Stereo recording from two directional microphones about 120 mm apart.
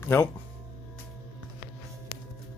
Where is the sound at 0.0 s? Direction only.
20° left (ahead or behind).